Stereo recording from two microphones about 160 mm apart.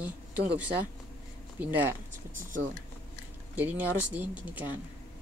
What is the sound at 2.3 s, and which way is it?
Speech, 55° right (ahead or behind).